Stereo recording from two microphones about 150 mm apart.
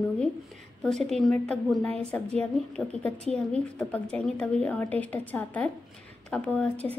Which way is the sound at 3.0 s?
10° left (ahead or behind).